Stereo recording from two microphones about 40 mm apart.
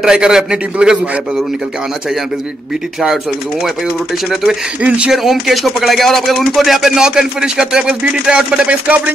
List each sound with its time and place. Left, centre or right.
0.0 s speech: centre
4.8 s speech: right
5.1 s speech: centre
7.0 s speech: centre
8.6 s speech: right